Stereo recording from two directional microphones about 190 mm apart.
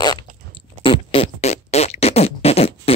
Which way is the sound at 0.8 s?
30° left (ahead or behind).